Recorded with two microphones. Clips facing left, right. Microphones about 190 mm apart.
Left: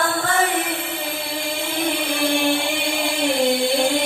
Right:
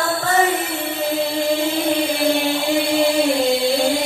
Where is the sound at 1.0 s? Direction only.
45° right (ahead or behind).